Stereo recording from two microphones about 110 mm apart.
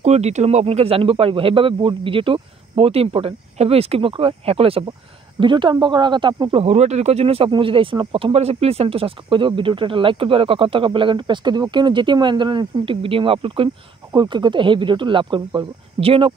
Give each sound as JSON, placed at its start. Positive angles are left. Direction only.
{"t": 0.0, "sound": "speech", "side_deg": -90}
{"t": 5.4, "sound": "speech", "side_deg": -45}
{"t": 6.6, "sound": "speech", "side_deg": -85}
{"t": 14.1, "sound": "speech", "side_deg": -45}